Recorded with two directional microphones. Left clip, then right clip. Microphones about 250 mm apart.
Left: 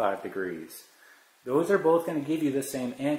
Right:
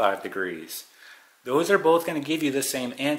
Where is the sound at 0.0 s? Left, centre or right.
Centre.